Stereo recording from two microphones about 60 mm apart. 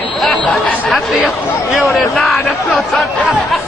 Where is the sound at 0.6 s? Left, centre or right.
Left.